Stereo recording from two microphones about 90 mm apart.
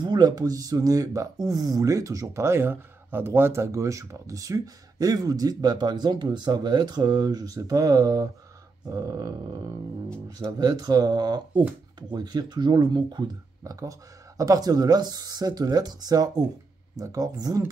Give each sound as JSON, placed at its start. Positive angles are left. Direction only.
{"t": 0.0, "sound": "speech", "side_deg": -50}
{"t": 13.7, "sound": "speech", "side_deg": -40}